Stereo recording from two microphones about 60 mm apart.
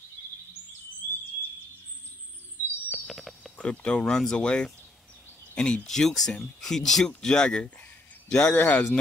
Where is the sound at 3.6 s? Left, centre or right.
Centre.